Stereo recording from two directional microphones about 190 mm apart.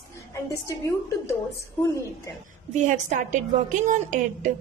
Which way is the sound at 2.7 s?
40° right (ahead or behind).